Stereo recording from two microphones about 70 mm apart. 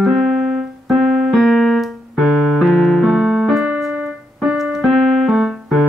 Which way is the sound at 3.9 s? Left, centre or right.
Centre.